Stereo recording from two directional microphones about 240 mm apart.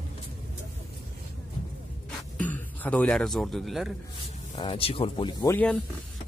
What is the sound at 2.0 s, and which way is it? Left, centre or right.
Speech, centre.